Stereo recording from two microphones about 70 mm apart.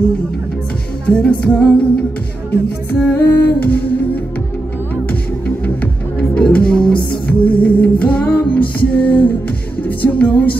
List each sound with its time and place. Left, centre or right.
1.0 s music: centre
3.0 s humming: left
5.8 s music: centre